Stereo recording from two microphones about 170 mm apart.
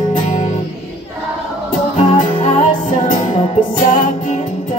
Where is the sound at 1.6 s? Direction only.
50° left (ahead or behind).